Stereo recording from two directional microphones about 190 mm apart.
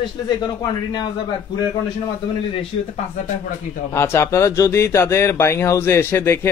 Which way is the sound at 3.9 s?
15° left (ahead or behind).